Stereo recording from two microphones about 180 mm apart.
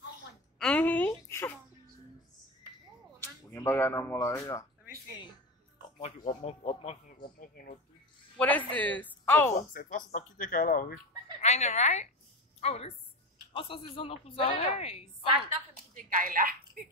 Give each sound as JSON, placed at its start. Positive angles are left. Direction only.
{"t": 0.6, "sound": "a sound", "side_deg": 5}
{"t": 3.2, "sound": "speech", "side_deg": 10}
{"t": 5.9, "sound": "speech", "side_deg": 30}
{"t": 7.2, "sound": "speech", "side_deg": 55}
{"t": 8.4, "sound": "speech", "side_deg": 10}
{"t": 9.5, "sound": "speech", "side_deg": 50}
{"t": 11.4, "sound": "a woman's voice", "side_deg": 40}
{"t": 15.7, "sound": "speech", "side_deg": -50}